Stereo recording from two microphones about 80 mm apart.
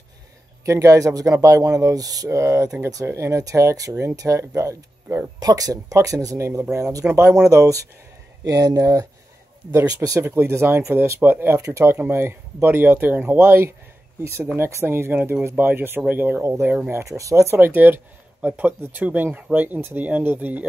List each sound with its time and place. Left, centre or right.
0.7 s speech: right
3.1 s speech: right
5.4 s speech: right
7.1 s speech: right
7.4 s speech: right
10.2 s speech: right
17.6 s speech: right